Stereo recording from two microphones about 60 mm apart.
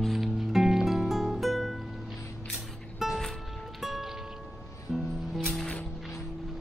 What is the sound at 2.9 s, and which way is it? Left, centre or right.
Music, centre.